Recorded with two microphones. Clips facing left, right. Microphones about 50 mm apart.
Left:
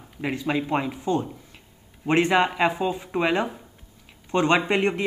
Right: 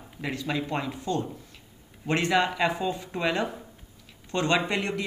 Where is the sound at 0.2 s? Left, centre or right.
Left.